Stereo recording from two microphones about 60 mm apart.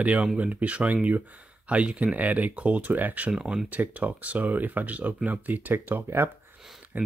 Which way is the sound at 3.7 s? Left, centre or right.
Right.